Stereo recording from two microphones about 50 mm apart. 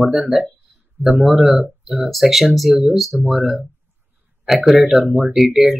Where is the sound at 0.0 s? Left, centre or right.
Centre.